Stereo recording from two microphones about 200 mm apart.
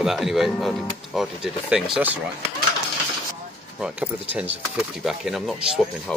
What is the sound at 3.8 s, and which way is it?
Speech, 5° right (ahead or behind).